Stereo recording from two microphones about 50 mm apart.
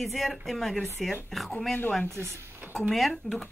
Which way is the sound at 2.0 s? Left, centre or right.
Right.